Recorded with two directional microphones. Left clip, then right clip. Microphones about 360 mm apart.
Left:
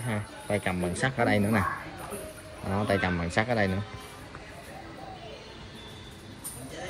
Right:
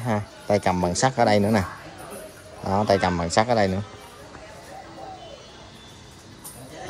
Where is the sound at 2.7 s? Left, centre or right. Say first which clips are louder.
Right 7 dB; centre.